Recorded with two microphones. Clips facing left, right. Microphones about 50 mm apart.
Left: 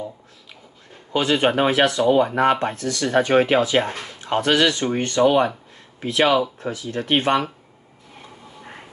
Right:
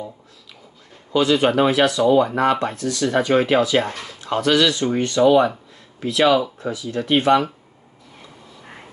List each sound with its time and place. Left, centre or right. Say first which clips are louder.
1.1 s speech: right 2 dB; left